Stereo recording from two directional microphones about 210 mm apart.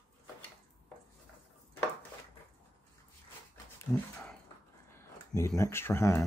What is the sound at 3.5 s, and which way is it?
Dog, 5° left (ahead or behind).